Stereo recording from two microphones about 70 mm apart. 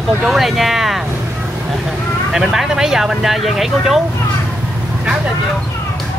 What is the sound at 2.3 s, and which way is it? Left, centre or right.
Speech, centre.